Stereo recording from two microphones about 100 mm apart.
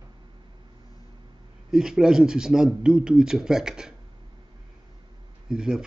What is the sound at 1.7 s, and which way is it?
Speech, 5° right (ahead or behind).